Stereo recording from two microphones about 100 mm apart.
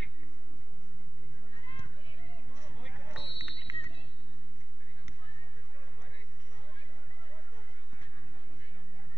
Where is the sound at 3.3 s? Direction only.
65° left (ahead or behind).